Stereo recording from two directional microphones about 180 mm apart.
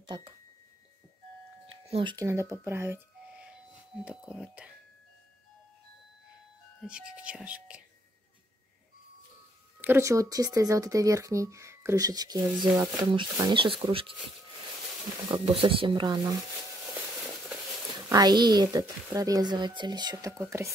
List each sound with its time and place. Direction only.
0.0 s speech: 25° right (ahead or behind)
1.7 s a sound: 30° right (ahead or behind)
2.2 s speech: 15° right (ahead or behind)
6.8 s speech: 5° right (ahead or behind)
9.8 s speech: 10° right (ahead or behind); by 14.1 s 30° right (ahead or behind)
15.2 s speech: 30° right (ahead or behind)
18.1 s speech: 25° right (ahead or behind)